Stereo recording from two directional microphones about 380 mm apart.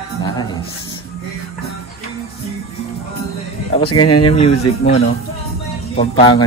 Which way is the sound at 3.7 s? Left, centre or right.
Centre.